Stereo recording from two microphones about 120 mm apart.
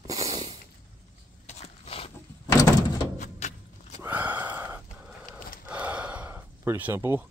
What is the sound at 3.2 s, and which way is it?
Door, 75° left (ahead or behind).